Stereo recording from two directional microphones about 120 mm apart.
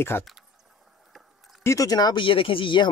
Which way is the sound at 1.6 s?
30° left (ahead or behind).